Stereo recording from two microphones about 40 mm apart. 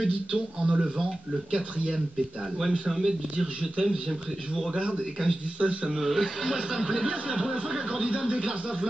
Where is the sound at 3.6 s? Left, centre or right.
Right.